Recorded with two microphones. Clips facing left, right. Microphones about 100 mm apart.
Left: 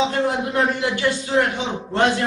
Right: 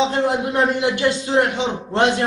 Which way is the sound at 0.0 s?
20° right (ahead or behind).